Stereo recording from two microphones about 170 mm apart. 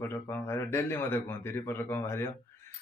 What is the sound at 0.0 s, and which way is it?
A man's voice, 15° left (ahead or behind).